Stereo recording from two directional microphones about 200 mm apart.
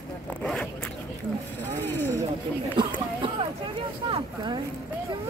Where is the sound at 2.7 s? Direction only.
25° right (ahead or behind).